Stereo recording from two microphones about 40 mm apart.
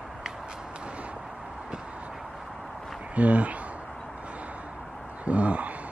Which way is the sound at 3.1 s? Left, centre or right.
Right.